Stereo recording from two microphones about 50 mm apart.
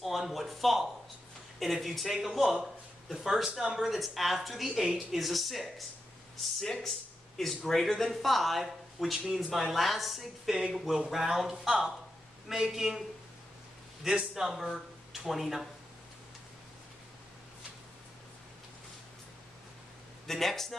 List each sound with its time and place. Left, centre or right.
0.0 s a man's voice: centre
5.2 s a man's voice: centre
14.0 s a man's voice: centre
20.2 s speech: centre